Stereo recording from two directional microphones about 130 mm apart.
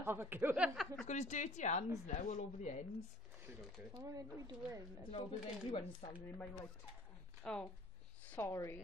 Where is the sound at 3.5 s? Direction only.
20° right (ahead or behind).